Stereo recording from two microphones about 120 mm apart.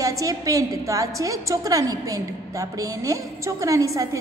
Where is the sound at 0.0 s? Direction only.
30° right (ahead or behind).